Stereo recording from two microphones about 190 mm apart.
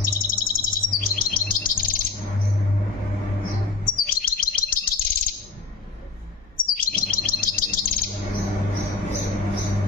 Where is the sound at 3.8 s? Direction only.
50° left (ahead or behind).